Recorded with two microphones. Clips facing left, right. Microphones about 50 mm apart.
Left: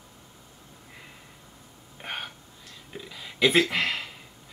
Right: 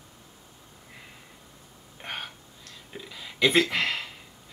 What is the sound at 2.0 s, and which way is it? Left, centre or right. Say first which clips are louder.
Gasp: left 1 dB; centre.